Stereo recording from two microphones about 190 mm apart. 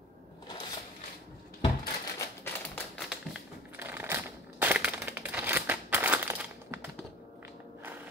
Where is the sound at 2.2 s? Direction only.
15° left (ahead or behind).